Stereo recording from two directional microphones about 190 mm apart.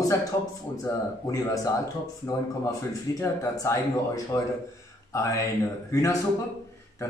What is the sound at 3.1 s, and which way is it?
Speech, 15° left (ahead or behind).